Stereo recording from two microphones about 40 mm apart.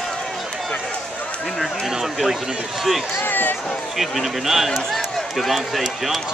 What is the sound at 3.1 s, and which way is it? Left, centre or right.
Speech, left.